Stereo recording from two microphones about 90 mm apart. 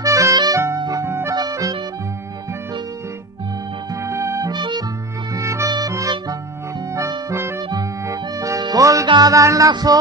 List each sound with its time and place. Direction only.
0.0 s harmonica: 35° right (ahead or behind)
0.7 s music: 45° right (ahead or behind)
1.0 s accordion: 30° right (ahead or behind)
1.3 s accordion: 45° right (ahead or behind)
4.1 s music: 35° right (ahead or behind)
4.5 s music: 55° right (ahead or behind)
5.3 s music: 35° right (ahead or behind)
7.7 s music: 40° right (ahead or behind)
9.0 s music: 55° right (ahead or behind)
9.3 s music: 40° right (ahead or behind)
9.7 s music: 50° right (ahead or behind)